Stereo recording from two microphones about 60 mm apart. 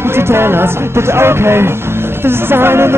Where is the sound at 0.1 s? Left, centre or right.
Right.